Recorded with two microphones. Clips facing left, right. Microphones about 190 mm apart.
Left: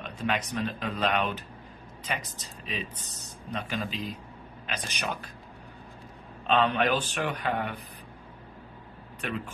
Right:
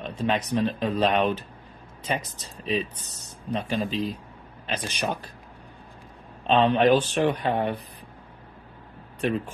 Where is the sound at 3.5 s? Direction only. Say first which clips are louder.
Right 6 dB; 30° right (ahead or behind).